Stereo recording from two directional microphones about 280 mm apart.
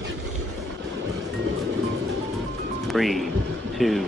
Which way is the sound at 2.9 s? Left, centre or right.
Centre.